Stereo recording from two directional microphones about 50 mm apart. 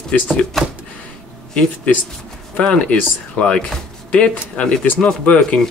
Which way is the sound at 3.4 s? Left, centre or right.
Centre.